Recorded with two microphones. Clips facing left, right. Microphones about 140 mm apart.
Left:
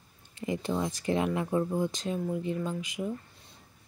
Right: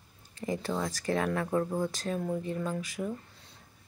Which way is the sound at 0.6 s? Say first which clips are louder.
Left 3 dB; 20° left (ahead or behind).